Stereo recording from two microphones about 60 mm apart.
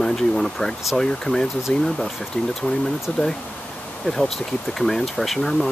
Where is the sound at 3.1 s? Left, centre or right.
Centre.